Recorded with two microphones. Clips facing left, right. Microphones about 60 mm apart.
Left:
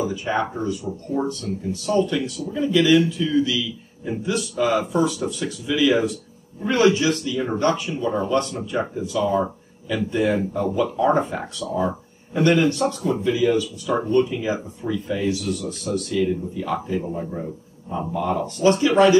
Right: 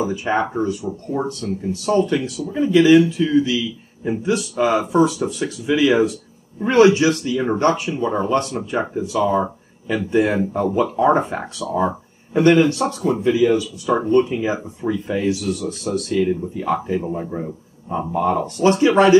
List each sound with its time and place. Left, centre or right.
0.0 s speech: right
6.8 s speech: centre
7.1 s speech: right
13.8 s speech: right